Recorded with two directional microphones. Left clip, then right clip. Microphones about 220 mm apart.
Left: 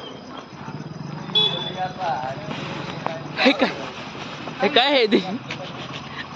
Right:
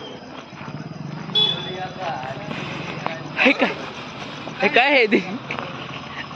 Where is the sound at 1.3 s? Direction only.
45° right (ahead or behind).